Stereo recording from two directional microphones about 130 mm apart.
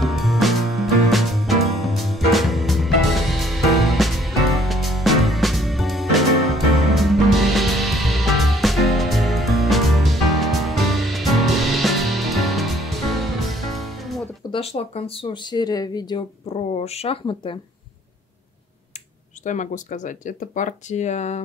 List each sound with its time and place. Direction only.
0.0 s music: centre (ahead or behind)
14.5 s speech: 50° left (ahead or behind); by 16.3 s 30° left (ahead or behind)
16.4 s speech: 55° left (ahead or behind)
17.3 s speech: 40° left (ahead or behind)
19.4 s speech: 75° left (ahead or behind)